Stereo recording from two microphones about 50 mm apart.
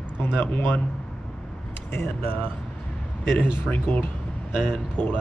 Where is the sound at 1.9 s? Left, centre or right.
Left.